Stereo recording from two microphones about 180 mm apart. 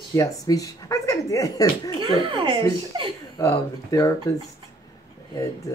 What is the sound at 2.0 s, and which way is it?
Speech, 30° right (ahead or behind).